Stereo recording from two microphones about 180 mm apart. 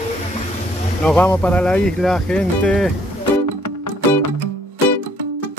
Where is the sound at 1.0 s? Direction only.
10° left (ahead or behind).